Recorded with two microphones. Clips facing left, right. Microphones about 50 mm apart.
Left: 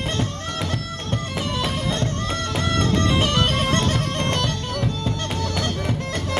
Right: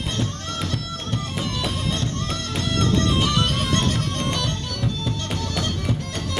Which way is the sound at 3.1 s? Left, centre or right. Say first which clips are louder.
Left 1 dB; left.